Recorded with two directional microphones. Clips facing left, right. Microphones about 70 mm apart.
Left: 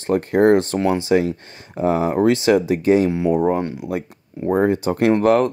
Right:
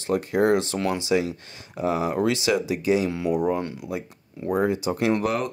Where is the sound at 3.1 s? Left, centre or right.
Left.